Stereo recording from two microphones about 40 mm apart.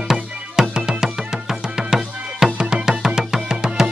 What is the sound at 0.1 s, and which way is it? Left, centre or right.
Music, centre.